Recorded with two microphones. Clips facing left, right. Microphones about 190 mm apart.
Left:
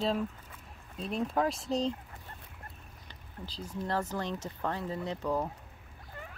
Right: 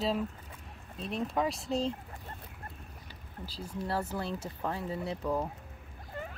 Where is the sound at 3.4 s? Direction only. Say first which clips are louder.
Even; 10° right (ahead or behind).